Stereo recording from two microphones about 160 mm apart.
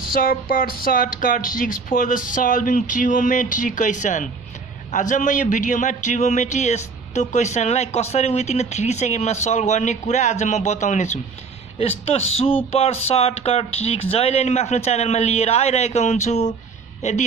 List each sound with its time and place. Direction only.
0.1 s a man's voice: 65° left (ahead or behind); by 17.2 s 45° left (ahead or behind)